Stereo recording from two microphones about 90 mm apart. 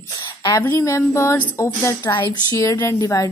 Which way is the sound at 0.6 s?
30° left (ahead or behind).